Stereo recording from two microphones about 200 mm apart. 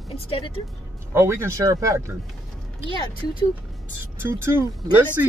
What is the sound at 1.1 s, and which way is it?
Speech, 15° right (ahead or behind).